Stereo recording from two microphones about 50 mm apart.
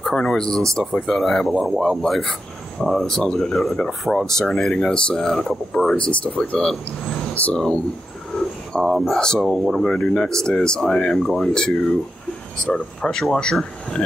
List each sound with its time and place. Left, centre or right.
0.1 s speech: centre
5.9 s speech: left
7.5 s speech: centre
8.8 s speech: centre
9.1 s speech: centre
9.4 s speech: centre
9.8 s speech: centre